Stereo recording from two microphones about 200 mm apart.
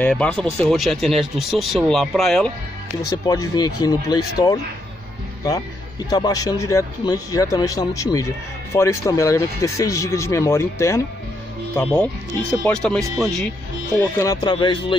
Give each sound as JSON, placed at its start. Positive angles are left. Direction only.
{"t": 0.0, "sound": "speech", "side_deg": 5}
{"t": 3.1, "sound": "speech", "side_deg": 20}
{"t": 13.9, "sound": "speech", "side_deg": 15}